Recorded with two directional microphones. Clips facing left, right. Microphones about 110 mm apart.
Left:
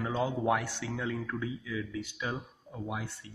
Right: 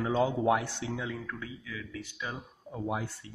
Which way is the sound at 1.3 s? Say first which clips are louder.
Left 5 dB; 15° left (ahead or behind).